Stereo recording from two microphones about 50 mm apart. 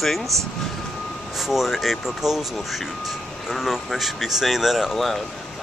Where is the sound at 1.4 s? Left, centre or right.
Centre.